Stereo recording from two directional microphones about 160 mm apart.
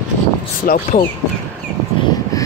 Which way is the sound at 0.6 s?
60° left (ahead or behind).